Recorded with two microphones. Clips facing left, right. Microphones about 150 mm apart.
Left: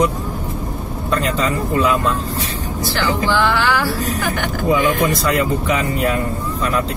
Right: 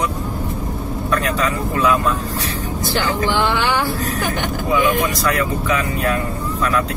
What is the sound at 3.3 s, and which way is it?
Music, 20° right (ahead or behind).